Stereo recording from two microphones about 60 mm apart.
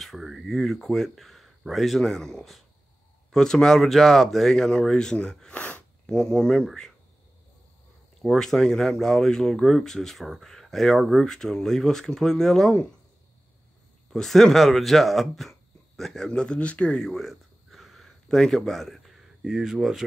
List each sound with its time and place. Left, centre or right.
0.0 s speech: centre
5.5 s speech: left
6.0 s speech: centre
8.2 s speech: centre
14.1 s speech: centre